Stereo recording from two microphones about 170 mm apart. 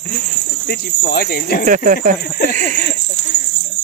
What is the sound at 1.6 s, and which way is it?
Speech, 50° right (ahead or behind).